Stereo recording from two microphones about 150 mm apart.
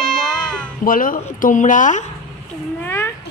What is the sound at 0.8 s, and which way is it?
A woman's voice, 70° left (ahead or behind).